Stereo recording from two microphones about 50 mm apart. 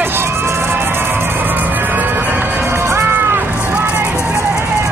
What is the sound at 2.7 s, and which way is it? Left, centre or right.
Music, right.